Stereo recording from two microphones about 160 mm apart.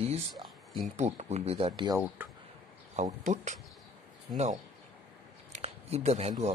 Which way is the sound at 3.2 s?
50° right (ahead or behind).